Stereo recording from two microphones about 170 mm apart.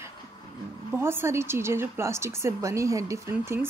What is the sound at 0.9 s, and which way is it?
A woman's voice, 15° right (ahead or behind).